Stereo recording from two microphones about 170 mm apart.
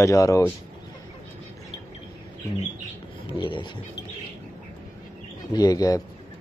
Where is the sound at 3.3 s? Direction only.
30° left (ahead or behind).